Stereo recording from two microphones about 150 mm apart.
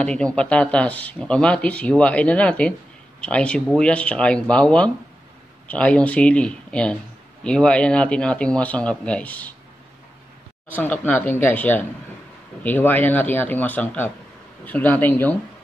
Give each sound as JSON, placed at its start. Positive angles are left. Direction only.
{"t": 0.0, "sound": "speech", "side_deg": 5}
{"t": 10.7, "sound": "speech", "side_deg": 10}